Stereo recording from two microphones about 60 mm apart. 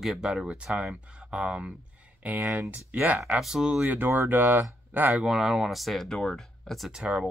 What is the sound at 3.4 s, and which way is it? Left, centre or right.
Speech, centre.